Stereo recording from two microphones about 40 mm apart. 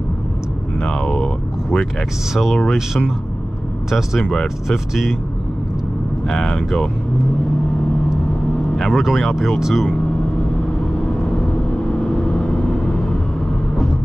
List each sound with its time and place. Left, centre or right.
0.8 s a sound: centre
2.5 s speech: centre
4.2 s speech: centre
4.6 s speech: centre
8.7 s speech: centre
11.0 s vehicle: left